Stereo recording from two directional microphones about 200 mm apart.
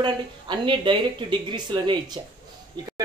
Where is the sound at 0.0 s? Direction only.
25° right (ahead or behind).